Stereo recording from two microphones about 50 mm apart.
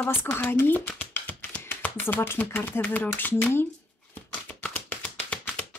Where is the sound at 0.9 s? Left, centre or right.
Left.